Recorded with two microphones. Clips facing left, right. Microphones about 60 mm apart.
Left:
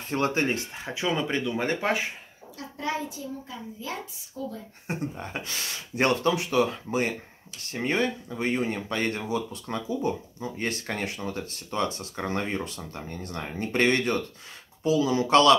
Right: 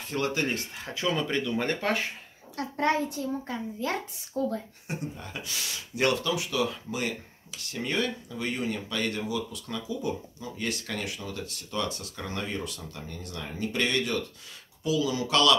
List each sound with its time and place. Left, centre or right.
0.1 s speech: left; by 2.0 s centre
2.5 s a child's voice: right
4.8 s speech: left